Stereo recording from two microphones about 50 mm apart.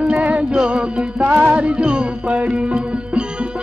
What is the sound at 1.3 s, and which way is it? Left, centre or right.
Music, right.